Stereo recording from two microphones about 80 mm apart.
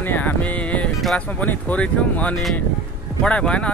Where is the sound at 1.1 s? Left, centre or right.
Centre.